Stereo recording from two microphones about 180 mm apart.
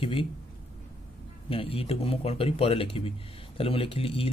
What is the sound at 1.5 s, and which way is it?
Speech, 30° left (ahead or behind).